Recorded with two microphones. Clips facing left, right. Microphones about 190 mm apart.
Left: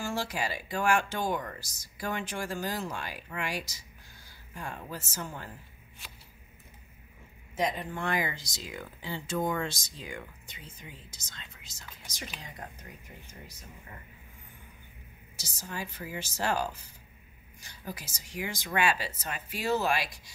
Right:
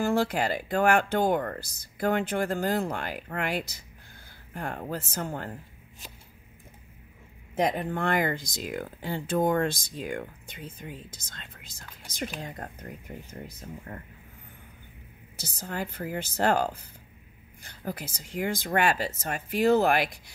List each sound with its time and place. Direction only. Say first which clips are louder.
0.0 s speech: right 8 dB; 55° right (ahead or behind)
7.5 s speech: right 5 dB; 60° right (ahead or behind)
15.3 s speech: right 5 dB; 55° right (ahead or behind)